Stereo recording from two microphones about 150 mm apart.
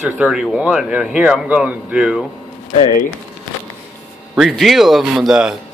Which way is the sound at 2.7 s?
55° left (ahead or behind).